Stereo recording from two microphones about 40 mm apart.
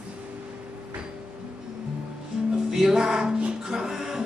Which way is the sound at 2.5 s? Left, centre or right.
Centre.